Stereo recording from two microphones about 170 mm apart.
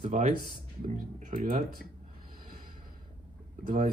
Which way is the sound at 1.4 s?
55° right (ahead or behind).